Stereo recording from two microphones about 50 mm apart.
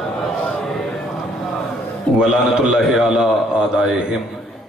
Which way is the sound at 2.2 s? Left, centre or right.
Centre.